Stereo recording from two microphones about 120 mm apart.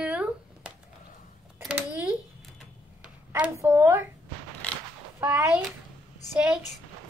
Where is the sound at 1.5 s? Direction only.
15° right (ahead or behind).